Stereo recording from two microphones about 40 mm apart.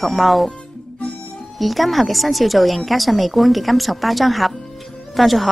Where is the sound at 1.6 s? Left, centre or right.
Centre.